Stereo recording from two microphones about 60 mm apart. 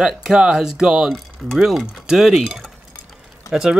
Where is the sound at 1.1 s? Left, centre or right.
Centre.